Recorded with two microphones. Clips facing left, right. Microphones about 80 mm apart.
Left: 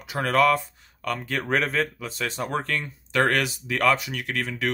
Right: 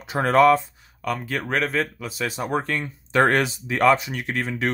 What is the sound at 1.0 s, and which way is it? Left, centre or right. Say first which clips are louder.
Speech: right 2 dB; centre.